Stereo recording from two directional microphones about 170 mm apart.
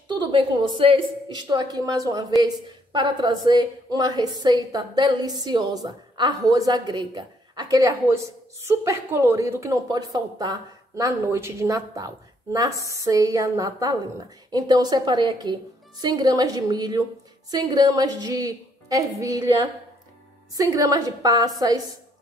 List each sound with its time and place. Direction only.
0.1 s a woman's voice: 25° right (ahead or behind)